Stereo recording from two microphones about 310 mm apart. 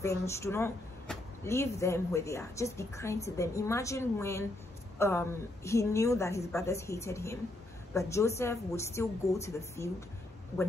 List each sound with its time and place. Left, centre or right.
0.0 s speech: centre